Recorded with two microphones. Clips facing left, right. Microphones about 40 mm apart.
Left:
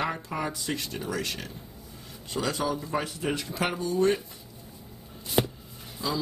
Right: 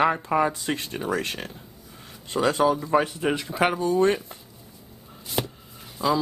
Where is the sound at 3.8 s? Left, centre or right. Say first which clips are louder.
Even; right.